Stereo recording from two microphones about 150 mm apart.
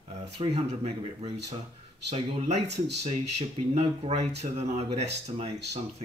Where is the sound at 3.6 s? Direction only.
40° right (ahead or behind).